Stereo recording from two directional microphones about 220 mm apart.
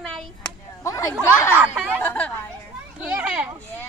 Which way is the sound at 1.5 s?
5° right (ahead or behind).